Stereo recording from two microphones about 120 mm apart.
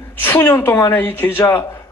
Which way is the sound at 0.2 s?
20° left (ahead or behind).